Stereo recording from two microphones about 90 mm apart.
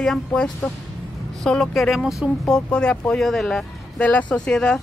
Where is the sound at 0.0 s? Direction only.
5° left (ahead or behind).